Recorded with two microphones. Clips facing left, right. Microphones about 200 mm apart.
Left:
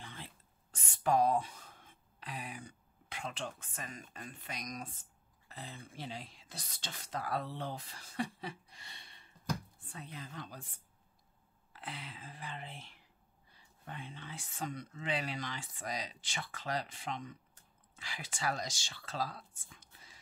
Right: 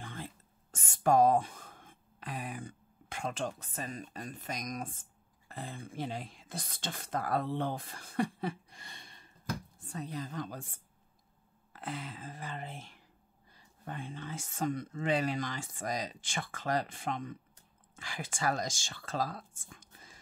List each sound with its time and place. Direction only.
0.0 s a sound: 50° right (ahead or behind)
5.5 s speech: 50° right (ahead or behind)
11.7 s speech: 45° right (ahead or behind)